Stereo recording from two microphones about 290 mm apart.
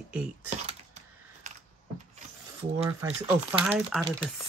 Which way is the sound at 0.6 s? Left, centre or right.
Right.